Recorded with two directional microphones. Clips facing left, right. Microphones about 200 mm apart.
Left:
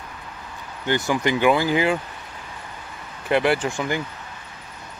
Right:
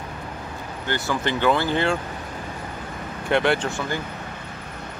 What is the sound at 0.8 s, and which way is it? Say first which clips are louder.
Speech: left 4 dB; 15° left (ahead or behind).